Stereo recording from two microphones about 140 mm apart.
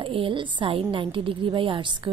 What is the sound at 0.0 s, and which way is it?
A woman's voice, 40° right (ahead or behind).